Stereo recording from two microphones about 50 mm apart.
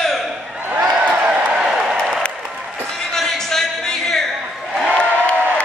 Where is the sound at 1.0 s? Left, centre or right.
Right.